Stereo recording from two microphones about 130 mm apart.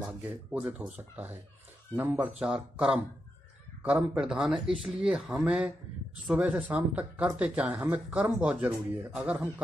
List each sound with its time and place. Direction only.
0.2 s speech: 10° right (ahead or behind)